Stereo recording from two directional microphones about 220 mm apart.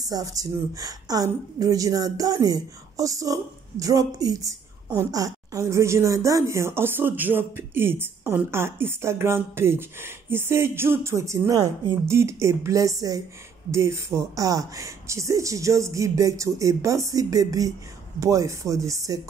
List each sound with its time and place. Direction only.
0.0 s a woman's voice: 15° right (ahead or behind)